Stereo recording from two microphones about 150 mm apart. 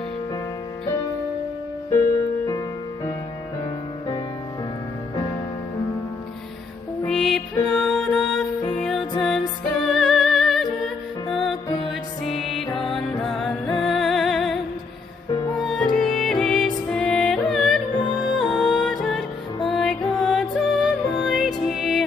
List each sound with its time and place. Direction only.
1.9 s music: 20° left (ahead or behind)
7.1 s music: 5° left (ahead or behind)
12.3 s music: centre (ahead or behind)